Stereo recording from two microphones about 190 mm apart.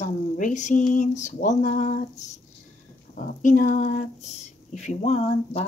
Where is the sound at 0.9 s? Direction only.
40° left (ahead or behind).